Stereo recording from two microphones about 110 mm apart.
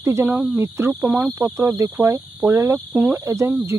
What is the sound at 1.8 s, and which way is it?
Speech, 30° right (ahead or behind).